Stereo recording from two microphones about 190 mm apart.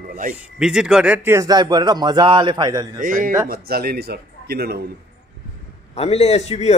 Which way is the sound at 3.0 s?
45° right (ahead or behind).